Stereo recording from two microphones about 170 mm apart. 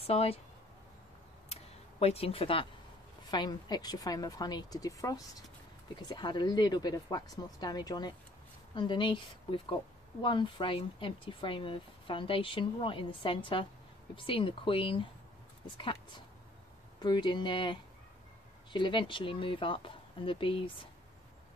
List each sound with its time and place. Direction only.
0.0 s speech: 35° left (ahead or behind)
1.5 s a sound: 35° left (ahead or behind)
3.3 s speech: 25° left (ahead or behind)